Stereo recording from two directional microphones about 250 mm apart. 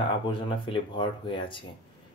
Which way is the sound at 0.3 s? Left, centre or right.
Centre.